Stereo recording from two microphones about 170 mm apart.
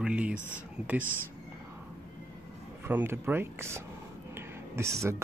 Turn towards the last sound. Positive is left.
turn(degrees=-15)  # may be behind; listen again after turning